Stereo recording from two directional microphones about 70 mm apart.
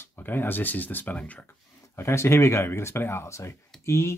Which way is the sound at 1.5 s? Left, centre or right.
Left.